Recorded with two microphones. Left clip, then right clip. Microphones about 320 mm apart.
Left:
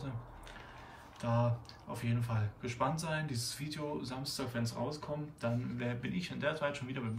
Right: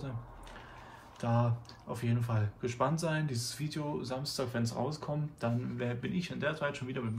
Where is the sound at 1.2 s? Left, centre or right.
Centre.